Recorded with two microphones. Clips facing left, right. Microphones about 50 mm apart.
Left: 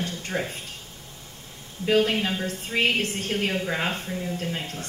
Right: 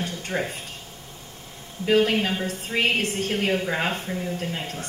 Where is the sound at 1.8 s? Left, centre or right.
Right.